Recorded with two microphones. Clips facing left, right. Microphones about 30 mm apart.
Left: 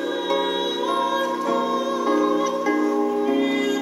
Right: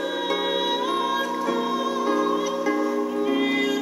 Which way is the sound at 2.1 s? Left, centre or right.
Centre.